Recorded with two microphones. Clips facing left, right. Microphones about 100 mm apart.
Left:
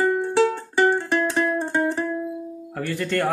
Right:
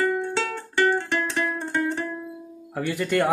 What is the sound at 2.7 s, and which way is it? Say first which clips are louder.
Speech: right 1 dB; 10° right (ahead or behind).